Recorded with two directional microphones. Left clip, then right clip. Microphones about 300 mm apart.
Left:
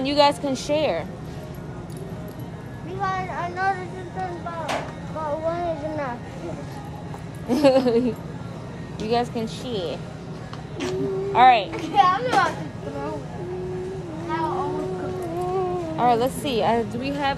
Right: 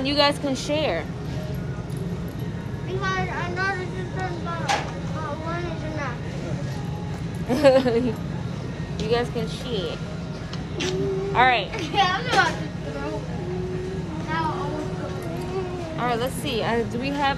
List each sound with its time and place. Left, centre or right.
0.0 s speech: centre
3.0 s vehicle: left
7.4 s speech: centre
11.3 s speech: centre
11.8 s speech: left
16.0 s speech: centre